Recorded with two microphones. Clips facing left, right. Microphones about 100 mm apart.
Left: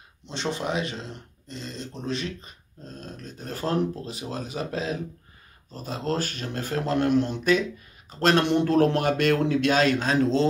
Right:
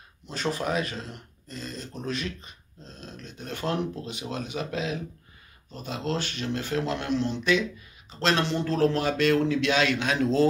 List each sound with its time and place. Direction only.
0.3 s speech: 25° left (ahead or behind)
2.8 s a man's voice: 45° left (ahead or behind)